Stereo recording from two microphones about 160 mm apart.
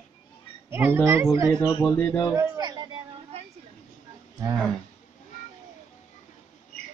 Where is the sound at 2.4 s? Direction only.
25° right (ahead or behind).